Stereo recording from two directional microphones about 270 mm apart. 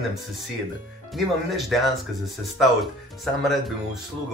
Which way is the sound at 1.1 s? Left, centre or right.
Centre.